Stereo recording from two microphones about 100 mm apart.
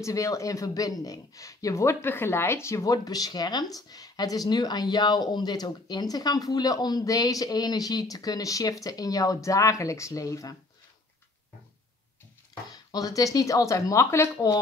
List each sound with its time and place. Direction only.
0.0 s speech: 35° left (ahead or behind)
12.9 s speech: 35° left (ahead or behind)